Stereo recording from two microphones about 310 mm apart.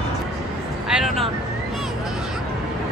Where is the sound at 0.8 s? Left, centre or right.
Centre.